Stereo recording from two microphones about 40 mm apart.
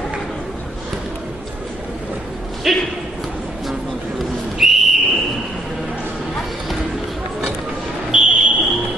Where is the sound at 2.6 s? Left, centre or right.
Centre.